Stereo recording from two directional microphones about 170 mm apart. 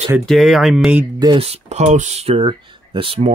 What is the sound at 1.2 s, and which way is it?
Speech, 30° right (ahead or behind).